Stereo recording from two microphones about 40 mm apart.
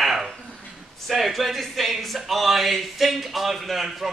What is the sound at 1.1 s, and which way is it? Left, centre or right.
Speech, centre.